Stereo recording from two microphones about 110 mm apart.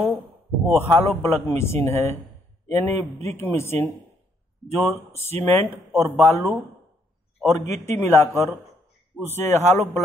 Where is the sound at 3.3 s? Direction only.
25° left (ahead or behind).